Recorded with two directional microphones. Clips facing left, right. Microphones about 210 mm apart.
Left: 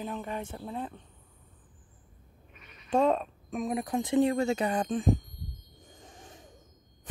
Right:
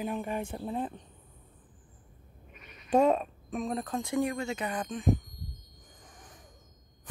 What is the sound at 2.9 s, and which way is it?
Speech, 10° right (ahead or behind).